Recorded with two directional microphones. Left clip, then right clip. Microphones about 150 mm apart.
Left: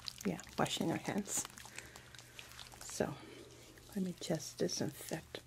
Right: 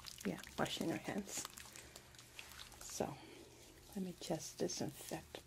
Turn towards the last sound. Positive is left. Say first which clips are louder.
# left 4 dB
turn(degrees=45)  # may be behind; listen again after turning